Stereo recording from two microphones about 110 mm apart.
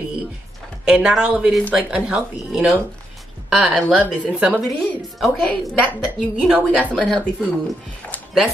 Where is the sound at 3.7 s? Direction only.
10° left (ahead or behind).